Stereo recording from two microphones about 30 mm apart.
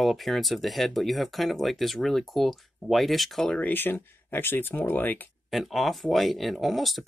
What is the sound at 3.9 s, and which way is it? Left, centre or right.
Speech, left.